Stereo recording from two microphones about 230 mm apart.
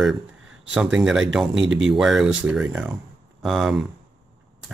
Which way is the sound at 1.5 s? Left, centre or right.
Right.